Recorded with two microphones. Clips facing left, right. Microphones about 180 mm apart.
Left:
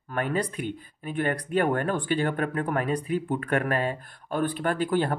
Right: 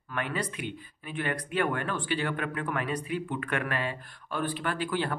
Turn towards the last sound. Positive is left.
turn(degrees=45)  # may be behind; listen again after turning